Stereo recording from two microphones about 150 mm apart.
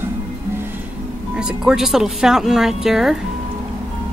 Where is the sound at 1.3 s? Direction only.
5° right (ahead or behind).